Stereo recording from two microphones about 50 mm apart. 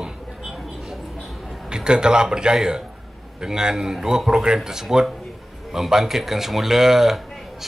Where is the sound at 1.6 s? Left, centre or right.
Centre.